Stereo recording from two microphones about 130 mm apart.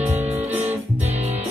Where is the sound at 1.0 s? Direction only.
55° right (ahead or behind).